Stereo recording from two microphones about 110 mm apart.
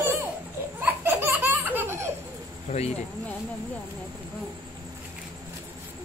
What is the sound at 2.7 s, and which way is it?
Speech, 90° left.